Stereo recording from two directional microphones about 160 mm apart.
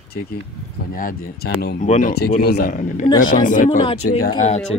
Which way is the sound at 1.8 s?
50° left (ahead or behind).